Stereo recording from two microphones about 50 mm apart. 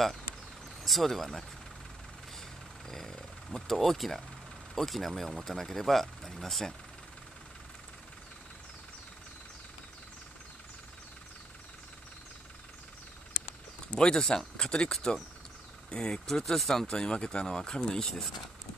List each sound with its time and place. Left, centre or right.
0.8 s speech: centre
2.9 s a sound: centre
4.7 s speech: centre
13.9 s speech: centre